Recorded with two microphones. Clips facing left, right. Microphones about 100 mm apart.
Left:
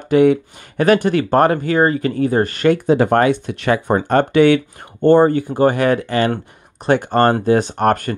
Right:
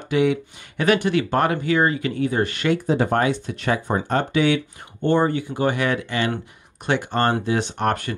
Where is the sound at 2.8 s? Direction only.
70° left (ahead or behind).